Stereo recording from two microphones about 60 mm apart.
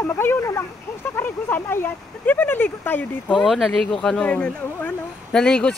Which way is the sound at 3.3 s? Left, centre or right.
Centre.